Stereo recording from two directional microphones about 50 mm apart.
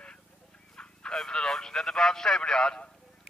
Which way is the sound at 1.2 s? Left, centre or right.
Centre.